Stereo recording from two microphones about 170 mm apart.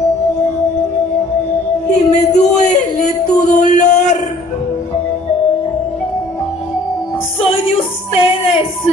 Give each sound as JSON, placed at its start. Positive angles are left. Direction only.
{"t": 1.9, "sound": "music", "side_deg": 40}
{"t": 7.3, "sound": "music", "side_deg": 35}